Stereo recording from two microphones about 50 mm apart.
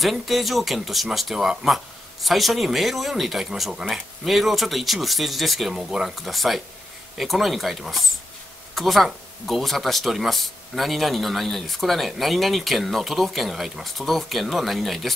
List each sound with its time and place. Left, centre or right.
0.0 s speech: centre